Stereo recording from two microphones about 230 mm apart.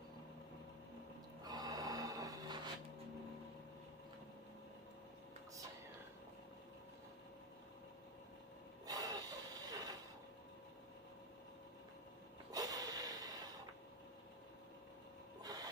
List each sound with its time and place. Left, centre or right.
1.4 s snort: centre
8.8 s vehicle: centre
12.4 s snort: centre
15.4 s printer: centre